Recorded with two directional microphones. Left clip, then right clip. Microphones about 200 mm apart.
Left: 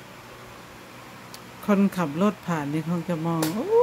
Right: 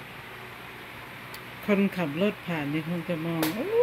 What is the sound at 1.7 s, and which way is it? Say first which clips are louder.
Speech: left 2 dB; 15° left (ahead or behind).